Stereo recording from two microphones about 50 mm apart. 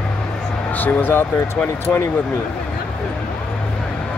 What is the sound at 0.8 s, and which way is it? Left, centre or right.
Speech, left.